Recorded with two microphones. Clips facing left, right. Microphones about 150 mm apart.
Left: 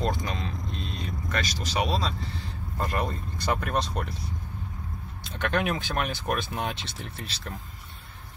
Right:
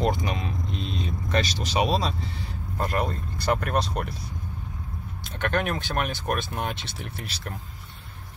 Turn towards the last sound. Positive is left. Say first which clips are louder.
# right 2 dB
turn(degrees=-10)  # may be behind; listen again after turning